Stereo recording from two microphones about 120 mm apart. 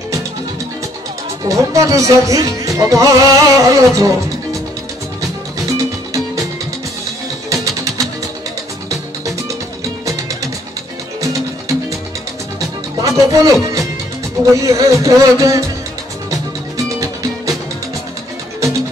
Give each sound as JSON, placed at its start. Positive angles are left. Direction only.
{"t": 1.4, "sound": "music", "side_deg": -25}
{"t": 5.7, "sound": "music", "side_deg": -25}
{"t": 7.4, "sound": "music", "side_deg": -25}
{"t": 12.5, "sound": "music", "side_deg": -30}